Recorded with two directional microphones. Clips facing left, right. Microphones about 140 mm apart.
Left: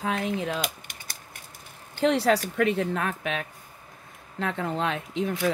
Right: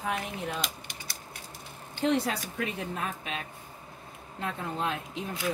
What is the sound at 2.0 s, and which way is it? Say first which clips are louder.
A woman's voice: left 6 dB; 90° left.